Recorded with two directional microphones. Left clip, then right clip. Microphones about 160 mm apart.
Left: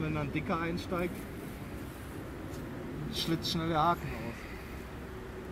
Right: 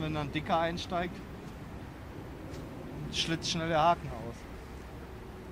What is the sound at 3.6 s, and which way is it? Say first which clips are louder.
Speech: right 3 dB; 25° right (ahead or behind).